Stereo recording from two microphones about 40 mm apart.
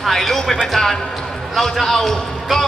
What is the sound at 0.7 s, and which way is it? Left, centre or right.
A man's voice, centre.